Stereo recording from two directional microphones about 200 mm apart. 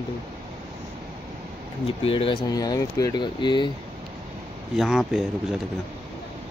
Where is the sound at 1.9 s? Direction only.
25° left (ahead or behind).